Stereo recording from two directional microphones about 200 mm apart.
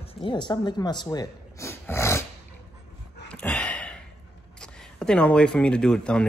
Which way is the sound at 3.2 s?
5° left (ahead or behind).